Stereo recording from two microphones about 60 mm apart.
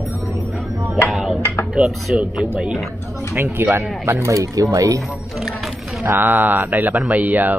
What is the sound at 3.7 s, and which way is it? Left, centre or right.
Speech, right.